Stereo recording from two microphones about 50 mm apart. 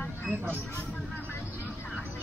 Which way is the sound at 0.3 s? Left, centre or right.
Centre.